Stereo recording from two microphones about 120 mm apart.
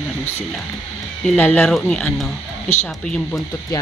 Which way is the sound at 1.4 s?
15° left (ahead or behind).